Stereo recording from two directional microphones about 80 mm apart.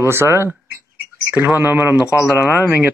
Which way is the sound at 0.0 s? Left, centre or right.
Right.